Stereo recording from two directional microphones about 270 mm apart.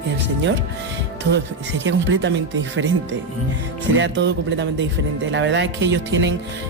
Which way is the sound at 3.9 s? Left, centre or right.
Right.